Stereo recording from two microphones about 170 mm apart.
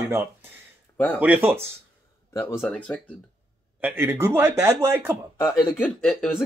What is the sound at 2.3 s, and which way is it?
Speech, 15° left (ahead or behind).